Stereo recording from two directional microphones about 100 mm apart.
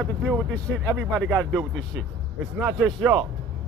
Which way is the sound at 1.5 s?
5° right (ahead or behind).